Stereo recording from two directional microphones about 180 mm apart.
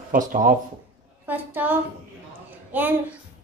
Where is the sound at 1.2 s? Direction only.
10° right (ahead or behind).